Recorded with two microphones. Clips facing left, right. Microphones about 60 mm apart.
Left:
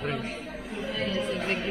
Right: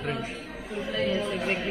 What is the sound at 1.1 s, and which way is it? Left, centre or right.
Chatter, right.